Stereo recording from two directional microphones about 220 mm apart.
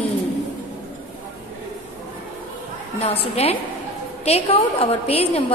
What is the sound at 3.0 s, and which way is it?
A woman's voice, 30° left (ahead or behind).